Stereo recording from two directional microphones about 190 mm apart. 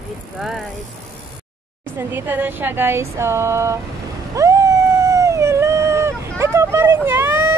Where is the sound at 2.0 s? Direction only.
10° right (ahead or behind).